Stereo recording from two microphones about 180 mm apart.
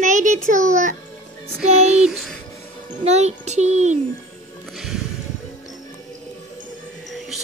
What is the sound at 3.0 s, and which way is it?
Child singing, 40° right (ahead or behind).